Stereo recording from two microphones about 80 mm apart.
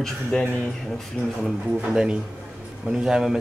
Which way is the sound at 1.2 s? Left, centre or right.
Centre.